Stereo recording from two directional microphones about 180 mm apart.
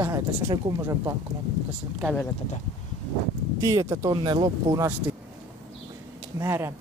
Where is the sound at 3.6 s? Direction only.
15° right (ahead or behind).